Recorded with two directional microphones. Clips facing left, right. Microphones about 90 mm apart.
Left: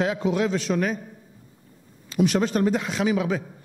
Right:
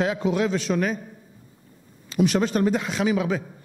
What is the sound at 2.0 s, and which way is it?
A man's voice, 15° right (ahead or behind).